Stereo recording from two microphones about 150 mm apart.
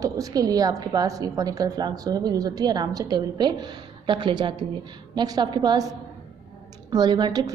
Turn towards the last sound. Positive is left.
turn(degrees=-30)  # may be behind; listen again after turning